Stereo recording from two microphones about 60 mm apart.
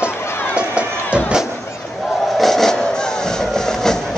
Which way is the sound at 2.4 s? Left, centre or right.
Centre.